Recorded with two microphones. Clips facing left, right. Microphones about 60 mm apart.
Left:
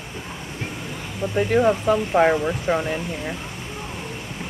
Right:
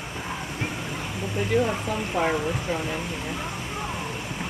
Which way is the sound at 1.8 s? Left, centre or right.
Left.